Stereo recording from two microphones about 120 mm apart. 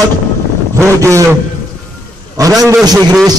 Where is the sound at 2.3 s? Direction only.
30° right (ahead or behind).